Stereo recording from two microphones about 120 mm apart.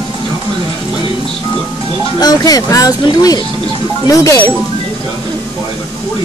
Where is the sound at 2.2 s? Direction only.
30° left (ahead or behind).